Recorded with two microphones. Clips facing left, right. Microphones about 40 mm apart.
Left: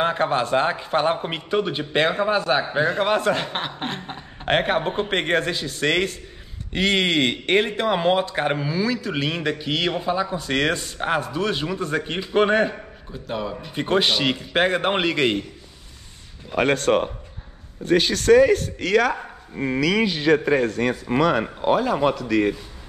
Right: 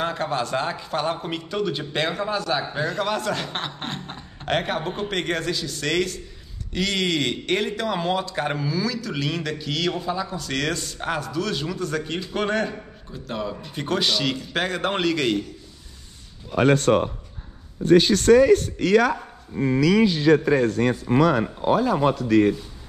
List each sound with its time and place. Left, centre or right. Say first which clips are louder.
0.0 s speech: left 4 dB; left
3.5 s speech: left 2 dB; centre
4.5 s speech: left 4 dB; left
13.1 s a man's voice: left 1 dB; centre
13.7 s speech: left 3 dB; left
17.9 s a man's voice: right 1 dB; left